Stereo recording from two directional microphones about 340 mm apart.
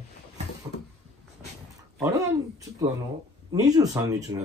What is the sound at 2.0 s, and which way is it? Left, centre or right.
Speech, centre.